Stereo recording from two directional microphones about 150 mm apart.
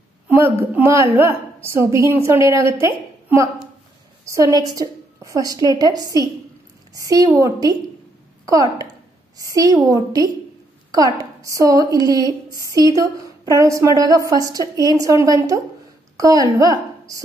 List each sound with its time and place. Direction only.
0.3 s a woman's voice: 15° right (ahead or behind)